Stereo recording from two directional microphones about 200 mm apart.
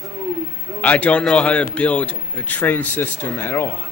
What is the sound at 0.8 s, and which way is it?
A man's voice, 5° left (ahead or behind).